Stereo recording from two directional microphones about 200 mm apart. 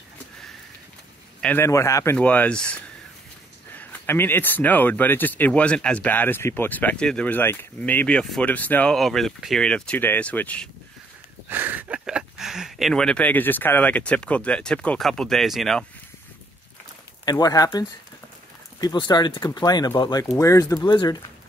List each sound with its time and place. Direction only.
1.4 s speech: 10° left (ahead or behind)
11.4 s speech: 10° right (ahead or behind)
17.2 s speech: 20° left (ahead or behind)